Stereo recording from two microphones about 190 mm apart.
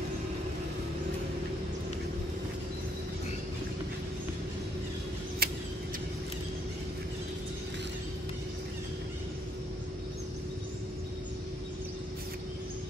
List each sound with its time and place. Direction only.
5.4 s vehicle: 55° right (ahead or behind)